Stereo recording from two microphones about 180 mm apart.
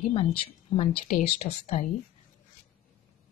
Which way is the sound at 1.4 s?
35° left (ahead or behind).